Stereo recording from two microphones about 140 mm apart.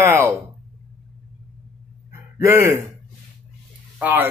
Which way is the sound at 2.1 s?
20° right (ahead or behind).